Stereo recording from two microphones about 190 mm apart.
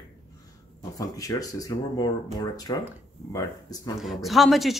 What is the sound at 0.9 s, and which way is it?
Speech, 20° left (ahead or behind).